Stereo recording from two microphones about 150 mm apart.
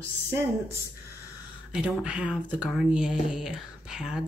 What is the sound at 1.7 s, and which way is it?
Speech, 5° right (ahead or behind).